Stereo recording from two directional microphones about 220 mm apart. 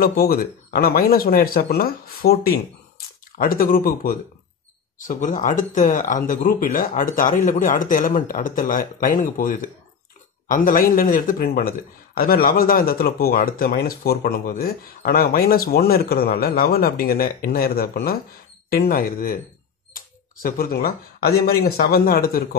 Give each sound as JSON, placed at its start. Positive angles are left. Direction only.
{"t": 0.0, "sound": "speech", "side_deg": 45}